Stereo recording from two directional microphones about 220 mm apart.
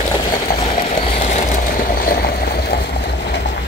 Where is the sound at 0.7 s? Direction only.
30° left (ahead or behind); by 3.5 s 50° left (ahead or behind).